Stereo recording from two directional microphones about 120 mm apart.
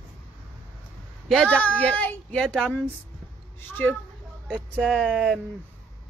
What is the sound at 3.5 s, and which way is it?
Speech, 15° left (ahead or behind).